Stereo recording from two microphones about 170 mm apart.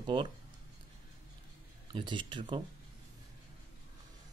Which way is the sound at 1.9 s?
30° right (ahead or behind).